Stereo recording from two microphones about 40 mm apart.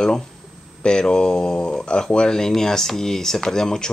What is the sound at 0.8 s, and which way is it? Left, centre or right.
Speech, left.